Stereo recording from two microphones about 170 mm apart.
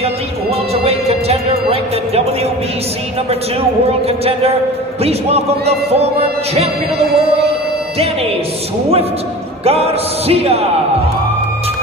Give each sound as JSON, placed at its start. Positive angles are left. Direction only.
{"t": 0.8, "sound": "speech", "side_deg": -35}
{"t": 4.2, "sound": "speech", "side_deg": -35}
{"t": 9.7, "sound": "speech", "side_deg": -35}